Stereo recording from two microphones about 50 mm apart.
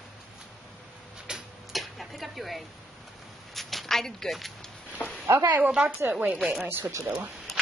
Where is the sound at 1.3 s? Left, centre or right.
Centre.